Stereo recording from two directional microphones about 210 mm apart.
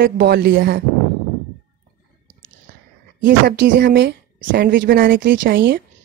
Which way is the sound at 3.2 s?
55° right (ahead or behind).